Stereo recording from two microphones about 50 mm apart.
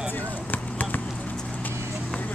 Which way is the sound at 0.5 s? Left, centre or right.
Left.